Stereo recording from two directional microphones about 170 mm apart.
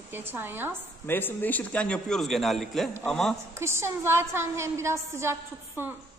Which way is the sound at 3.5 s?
15° right (ahead or behind).